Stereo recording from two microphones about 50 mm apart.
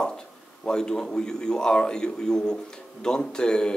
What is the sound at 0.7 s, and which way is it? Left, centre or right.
A man's voice, centre.